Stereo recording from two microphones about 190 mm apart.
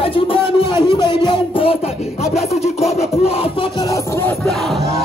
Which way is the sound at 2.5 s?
35° left (ahead or behind).